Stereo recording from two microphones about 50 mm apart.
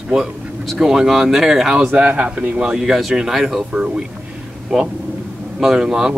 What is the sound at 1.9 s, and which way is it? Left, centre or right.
Speech, right.